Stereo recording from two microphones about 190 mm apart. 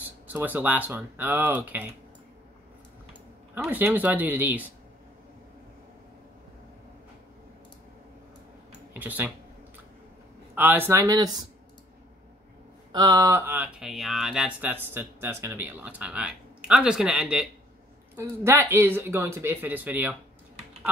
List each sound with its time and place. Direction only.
0.3 s speech: 10° right (ahead or behind)
3.5 s speech: 10° right (ahead or behind)
8.9 s speech: 10° right (ahead or behind)
10.5 s speech: 10° right (ahead or behind)
12.9 s speech: 20° right (ahead or behind)